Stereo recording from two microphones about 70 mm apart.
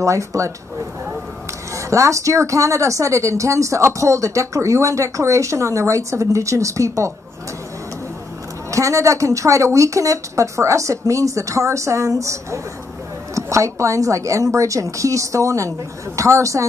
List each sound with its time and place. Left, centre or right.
0.0 s a woman's voice: right
1.8 s a woman's voice: right
8.6 s a woman's voice: right